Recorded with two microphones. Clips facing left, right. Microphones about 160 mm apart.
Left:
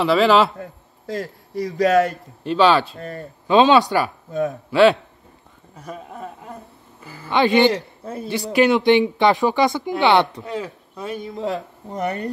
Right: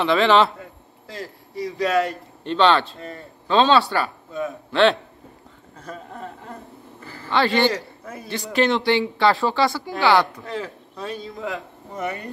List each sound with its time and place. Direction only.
0.0 s a man's voice: 5° left (ahead or behind)
0.6 s a man's voice: 40° left (ahead or behind)
2.4 s speech: 5° left (ahead or behind)
3.0 s speech: 60° left (ahead or behind)
3.4 s speech: 15° left (ahead or behind)
4.3 s speech: 40° left (ahead or behind)
4.6 s a man's voice: 5° left (ahead or behind)
8.0 s a man's voice: 30° left (ahead or behind)
8.5 s speech: 10° left (ahead or behind)
11.4 s speech: 35° left (ahead or behind)